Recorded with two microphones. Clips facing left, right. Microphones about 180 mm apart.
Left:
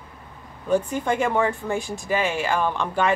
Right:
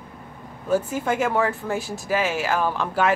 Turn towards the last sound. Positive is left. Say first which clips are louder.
# even
turn(degrees=-5)  # may be behind; listen again after turning